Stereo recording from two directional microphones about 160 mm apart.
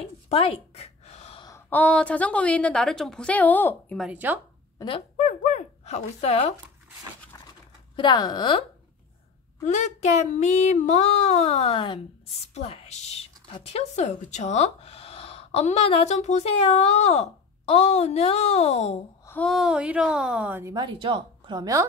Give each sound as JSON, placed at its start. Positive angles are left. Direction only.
{"t": 0.3, "sound": "a sound", "side_deg": 40}
{"t": 1.7, "sound": "a woman's voice", "side_deg": 10}
{"t": 4.1, "sound": "speech", "side_deg": -10}
{"t": 4.8, "sound": "speech", "side_deg": 35}
{"t": 5.2, "sound": "speech", "side_deg": 45}
{"t": 7.9, "sound": "speech", "side_deg": 30}
{"t": 9.7, "sound": "child singing", "side_deg": 45}
{"t": 19.2, "sound": "a woman's voice", "side_deg": 10}
{"t": 20.7, "sound": "speech", "side_deg": -30}